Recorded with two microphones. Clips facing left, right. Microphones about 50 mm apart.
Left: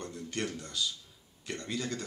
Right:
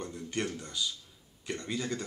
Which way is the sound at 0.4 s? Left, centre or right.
Centre.